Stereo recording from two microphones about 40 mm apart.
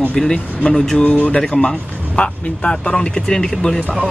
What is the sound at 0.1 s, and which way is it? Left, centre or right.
Speech, left.